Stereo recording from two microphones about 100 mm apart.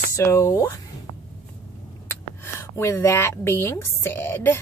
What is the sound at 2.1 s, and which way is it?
Speech, 25° left (ahead or behind).